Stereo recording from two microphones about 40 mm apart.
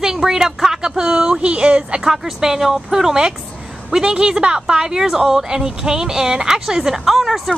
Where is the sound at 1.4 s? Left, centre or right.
Right.